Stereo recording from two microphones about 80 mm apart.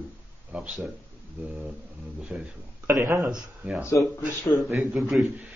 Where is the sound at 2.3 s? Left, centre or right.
Centre.